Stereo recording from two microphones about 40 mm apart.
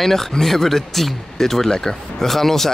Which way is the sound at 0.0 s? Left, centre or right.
Centre.